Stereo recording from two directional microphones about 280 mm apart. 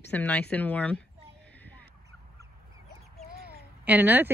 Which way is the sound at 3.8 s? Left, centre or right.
Centre.